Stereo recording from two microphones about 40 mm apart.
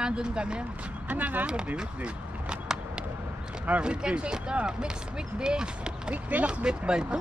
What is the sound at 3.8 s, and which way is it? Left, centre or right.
Speech, right.